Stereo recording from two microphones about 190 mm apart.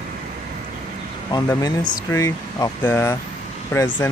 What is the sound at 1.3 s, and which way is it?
Speech, 20° left (ahead or behind).